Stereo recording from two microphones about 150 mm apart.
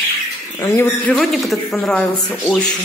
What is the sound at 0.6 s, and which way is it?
Speech, 20° left (ahead or behind).